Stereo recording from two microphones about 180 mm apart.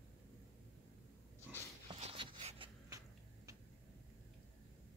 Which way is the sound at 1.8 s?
30° right (ahead or behind).